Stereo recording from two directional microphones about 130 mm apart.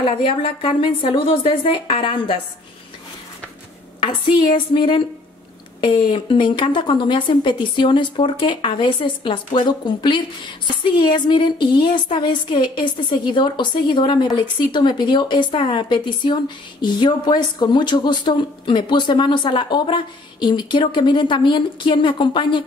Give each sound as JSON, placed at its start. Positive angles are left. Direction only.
{"t": 0.0, "sound": "a woman's voice", "side_deg": 40}
{"t": 4.0, "sound": "a woman's voice", "side_deg": 40}